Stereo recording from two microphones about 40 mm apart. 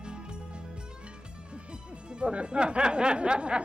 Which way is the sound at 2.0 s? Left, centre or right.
Right.